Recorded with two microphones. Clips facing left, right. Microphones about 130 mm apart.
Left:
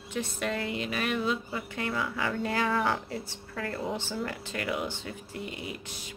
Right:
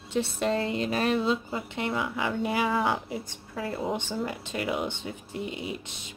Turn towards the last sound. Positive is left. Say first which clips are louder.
# right 3 dB
turn(degrees=-20)  # may be behind; listen again after turning